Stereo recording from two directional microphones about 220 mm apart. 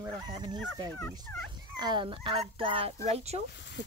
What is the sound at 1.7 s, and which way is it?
Speech, 20° right (ahead or behind).